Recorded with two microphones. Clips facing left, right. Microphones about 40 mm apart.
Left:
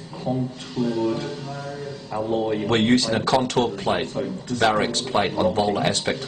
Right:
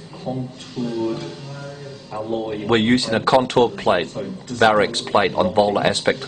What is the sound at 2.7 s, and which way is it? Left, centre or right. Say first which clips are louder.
A man's voice: right 3 dB; centre.